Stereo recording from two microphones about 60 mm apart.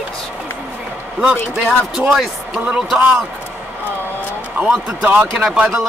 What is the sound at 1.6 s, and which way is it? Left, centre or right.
Speech, centre.